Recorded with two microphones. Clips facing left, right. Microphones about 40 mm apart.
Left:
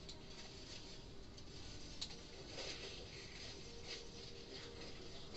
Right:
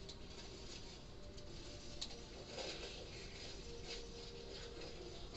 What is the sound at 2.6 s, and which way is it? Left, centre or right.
Vehicle, right.